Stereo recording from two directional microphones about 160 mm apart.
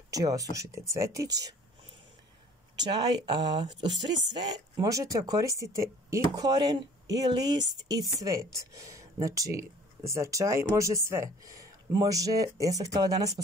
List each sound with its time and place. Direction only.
0.1 s a woman's voice: 20° right (ahead or behind)
2.8 s a woman's voice: 25° right (ahead or behind)